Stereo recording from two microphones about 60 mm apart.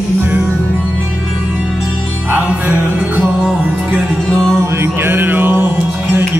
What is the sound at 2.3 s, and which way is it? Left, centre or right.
Music, right.